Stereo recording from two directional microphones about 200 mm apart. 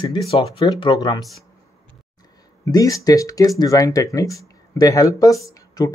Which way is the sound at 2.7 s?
15° left (ahead or behind).